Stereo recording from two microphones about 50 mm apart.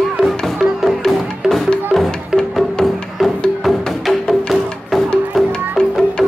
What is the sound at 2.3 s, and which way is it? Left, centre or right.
Music, centre.